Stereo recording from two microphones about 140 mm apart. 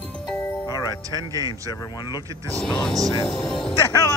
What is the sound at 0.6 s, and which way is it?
Music, 30° left (ahead or behind).